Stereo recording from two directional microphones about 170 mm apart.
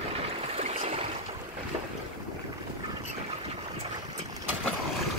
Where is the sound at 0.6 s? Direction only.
40° right (ahead or behind).